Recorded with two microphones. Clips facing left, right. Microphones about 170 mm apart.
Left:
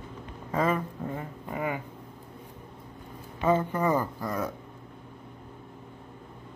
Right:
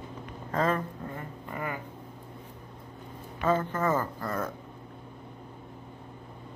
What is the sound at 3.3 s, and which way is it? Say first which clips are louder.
A man's voice: left 2 dB; 15° left (ahead or behind).